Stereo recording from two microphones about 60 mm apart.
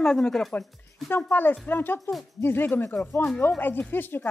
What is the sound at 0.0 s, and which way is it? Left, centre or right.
Speech, centre.